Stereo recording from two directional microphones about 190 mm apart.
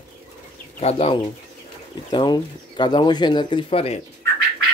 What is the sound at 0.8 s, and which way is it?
Speech, 30° left (ahead or behind).